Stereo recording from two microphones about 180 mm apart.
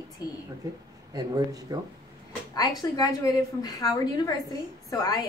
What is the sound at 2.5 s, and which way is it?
A woman's voice, 20° left (ahead or behind).